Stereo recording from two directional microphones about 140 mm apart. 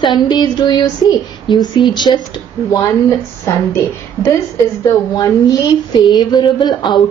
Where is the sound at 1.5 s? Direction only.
35° left (ahead or behind).